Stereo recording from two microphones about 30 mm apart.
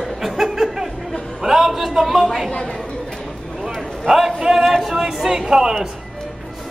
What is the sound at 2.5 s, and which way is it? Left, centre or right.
Speech, left.